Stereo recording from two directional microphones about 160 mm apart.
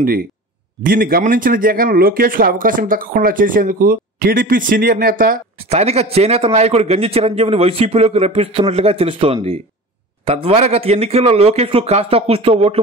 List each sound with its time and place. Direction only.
0.8 s speech: 65° right (ahead or behind)
5.6 s a man's voice: 40° right (ahead or behind)